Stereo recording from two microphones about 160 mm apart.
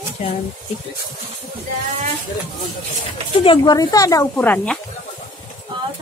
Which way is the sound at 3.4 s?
30° left (ahead or behind).